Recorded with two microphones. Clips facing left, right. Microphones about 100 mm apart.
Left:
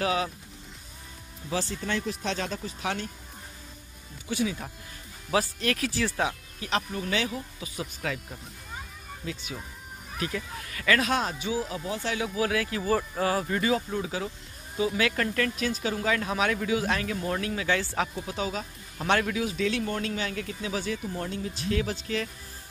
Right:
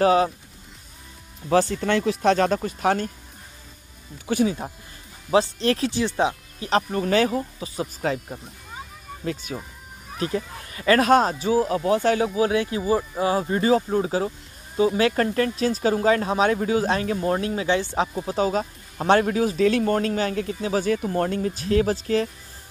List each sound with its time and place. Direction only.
0.0 s speech: 40° right (ahead or behind)
1.5 s speech: 55° right (ahead or behind)
4.3 s speech: 60° right (ahead or behind)
5.3 s speech: 30° right (ahead or behind)
6.7 s speech: 45° right (ahead or behind)
9.2 s speech: 45° right (ahead or behind)
10.1 s speech: 35° right (ahead or behind)
11.0 s speech: 40° right (ahead or behind)
11.8 s speech: 65° right (ahead or behind)
12.4 s speech: 25° right (ahead or behind)
18.1 s speech: 40° right (ahead or behind)